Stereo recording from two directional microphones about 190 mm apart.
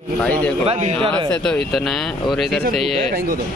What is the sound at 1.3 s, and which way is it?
Speech, 5° left (ahead or behind).